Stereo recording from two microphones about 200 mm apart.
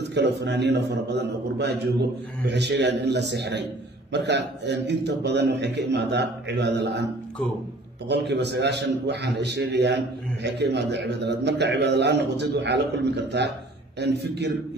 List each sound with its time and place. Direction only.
0.1 s a man's voice: 60° right (ahead or behind)
2.4 s a man's voice: 60° right (ahead or behind)
8.1 s a man's voice: 60° right (ahead or behind)